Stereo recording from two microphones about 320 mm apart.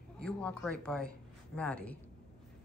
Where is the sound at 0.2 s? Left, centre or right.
Centre.